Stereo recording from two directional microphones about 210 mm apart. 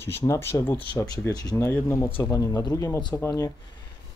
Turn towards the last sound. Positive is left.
turn(degrees=15)  # may be behind; listen again after turning